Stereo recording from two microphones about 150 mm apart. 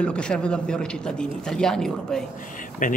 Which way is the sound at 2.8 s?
60° left (ahead or behind).